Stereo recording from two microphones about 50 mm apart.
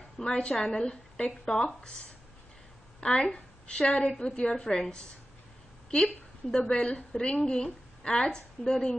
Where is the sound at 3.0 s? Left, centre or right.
Centre.